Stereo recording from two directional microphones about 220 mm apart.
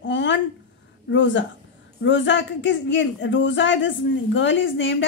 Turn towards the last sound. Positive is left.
turn(degrees=55)  # may be behind; listen again after turning